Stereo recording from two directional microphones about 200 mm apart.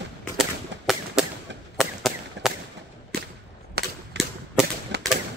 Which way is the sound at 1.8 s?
Centre (ahead or behind).